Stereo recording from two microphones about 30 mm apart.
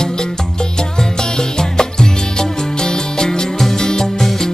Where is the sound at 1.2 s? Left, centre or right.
Left.